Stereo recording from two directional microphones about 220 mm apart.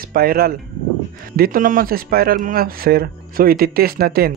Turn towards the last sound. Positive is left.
turn(degrees=-45)  # may be behind; listen again after turning